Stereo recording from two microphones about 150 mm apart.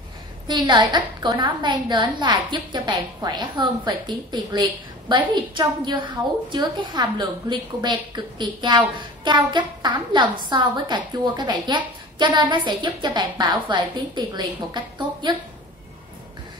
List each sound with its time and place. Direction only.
0.5 s a woman's voice: 30° right (ahead or behind)